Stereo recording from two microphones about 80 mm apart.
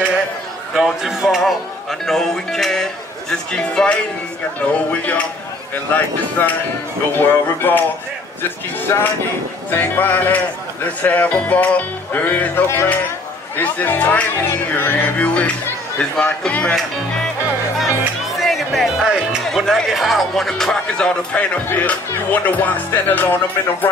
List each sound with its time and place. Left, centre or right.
0.7 s a man's voice: centre
5.9 s music: left
12.6 s speech: left
13.6 s music: left
16.0 s speech: centre
18.4 s music: centre
19.4 s a man's voice: centre
21.6 s music: left